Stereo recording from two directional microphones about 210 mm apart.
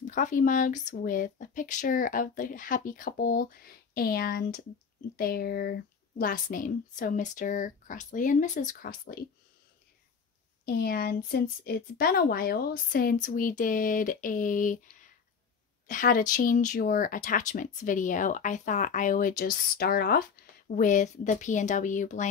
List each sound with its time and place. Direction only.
0.0 s speech: 35° left (ahead or behind)
10.6 s a woman's voice: 45° left (ahead or behind)
15.9 s speech: 40° left (ahead or behind)